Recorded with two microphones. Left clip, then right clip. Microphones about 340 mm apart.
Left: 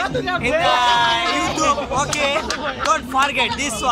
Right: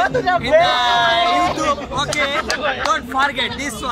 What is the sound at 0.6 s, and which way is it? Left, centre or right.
Speech, centre.